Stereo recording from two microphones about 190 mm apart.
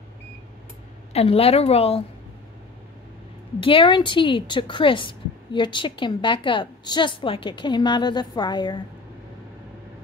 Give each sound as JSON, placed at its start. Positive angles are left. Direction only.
{"t": 1.1, "sound": "a woman's voice", "side_deg": 30}
{"t": 3.5, "sound": "a woman's voice", "side_deg": 25}